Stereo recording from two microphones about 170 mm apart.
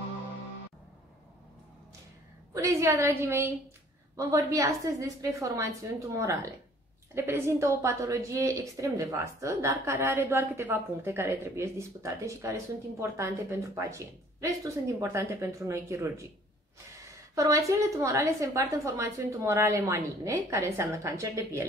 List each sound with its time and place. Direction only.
2.5 s a woman's voice: 20° right (ahead or behind)
17.4 s a woman's voice: 20° right (ahead or behind)